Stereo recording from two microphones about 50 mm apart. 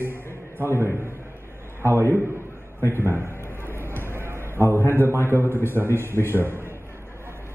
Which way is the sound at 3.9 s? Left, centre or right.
Right.